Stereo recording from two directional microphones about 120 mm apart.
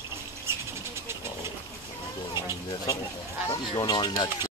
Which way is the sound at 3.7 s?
35° left (ahead or behind).